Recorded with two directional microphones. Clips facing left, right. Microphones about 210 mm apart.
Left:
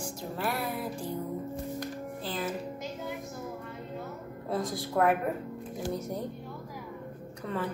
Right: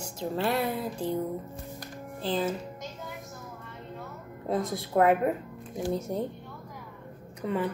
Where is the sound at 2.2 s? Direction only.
30° right (ahead or behind).